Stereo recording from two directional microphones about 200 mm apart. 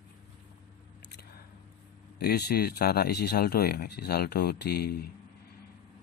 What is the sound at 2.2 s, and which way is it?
Speech, 50° left (ahead or behind).